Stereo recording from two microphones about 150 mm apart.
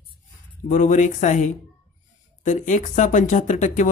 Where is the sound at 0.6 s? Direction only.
55° left (ahead or behind).